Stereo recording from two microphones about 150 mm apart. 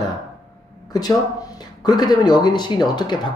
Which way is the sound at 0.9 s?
25° left (ahead or behind).